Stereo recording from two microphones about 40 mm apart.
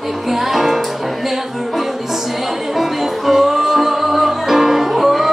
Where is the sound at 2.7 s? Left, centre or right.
Centre.